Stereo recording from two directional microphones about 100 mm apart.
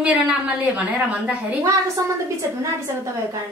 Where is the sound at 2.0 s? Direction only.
35° right (ahead or behind).